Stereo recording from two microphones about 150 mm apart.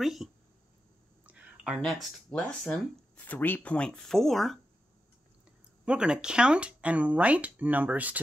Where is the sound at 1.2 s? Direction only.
5° right (ahead or behind).